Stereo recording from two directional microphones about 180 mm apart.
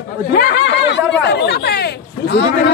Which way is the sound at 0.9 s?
70° left (ahead or behind).